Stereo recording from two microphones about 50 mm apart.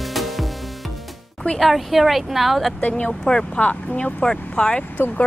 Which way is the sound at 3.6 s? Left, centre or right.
Left.